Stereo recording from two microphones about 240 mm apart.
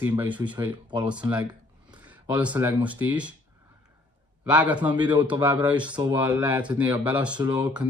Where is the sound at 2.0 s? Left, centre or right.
Centre.